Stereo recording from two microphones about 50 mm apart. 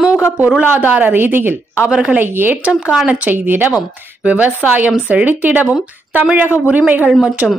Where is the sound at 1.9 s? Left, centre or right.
Centre.